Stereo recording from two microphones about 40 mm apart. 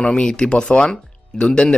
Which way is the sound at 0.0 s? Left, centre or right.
Left.